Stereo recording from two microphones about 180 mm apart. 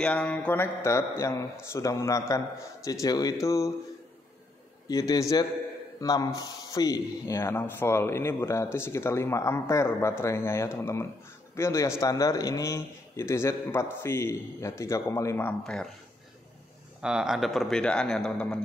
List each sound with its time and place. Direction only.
0.0 s speech: 5° left (ahead or behind)
4.8 s a man's voice: 20° left (ahead or behind); by 15.9 s 5° left (ahead or behind)
17.0 s speech: 5° right (ahead or behind)